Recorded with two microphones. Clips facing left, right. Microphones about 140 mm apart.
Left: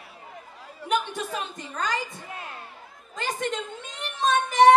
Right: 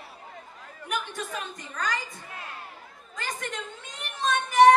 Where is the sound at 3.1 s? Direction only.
25° left (ahead or behind).